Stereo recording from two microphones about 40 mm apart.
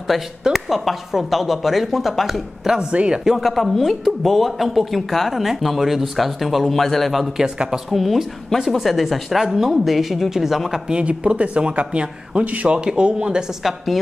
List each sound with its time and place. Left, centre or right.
0.1 s a woman's voice: centre
2.6 s speech: centre
2.9 s speech: right
3.3 s a woman's voice: centre
7.4 s a woman's voice: centre
7.9 s a woman's voice: centre
10.9 s speech: right
13.6 s a woman's voice: centre